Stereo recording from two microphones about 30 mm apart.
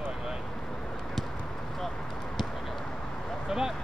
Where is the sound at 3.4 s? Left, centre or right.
Centre.